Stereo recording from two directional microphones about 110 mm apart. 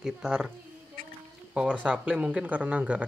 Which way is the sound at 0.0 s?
5° right (ahead or behind).